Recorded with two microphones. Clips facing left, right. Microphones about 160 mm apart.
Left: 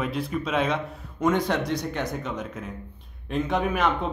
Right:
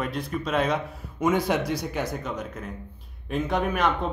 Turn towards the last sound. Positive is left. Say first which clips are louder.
# even
turn(degrees=0)  # may be behind; listen again after turning